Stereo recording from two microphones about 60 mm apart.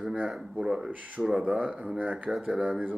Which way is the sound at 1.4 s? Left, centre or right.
Right.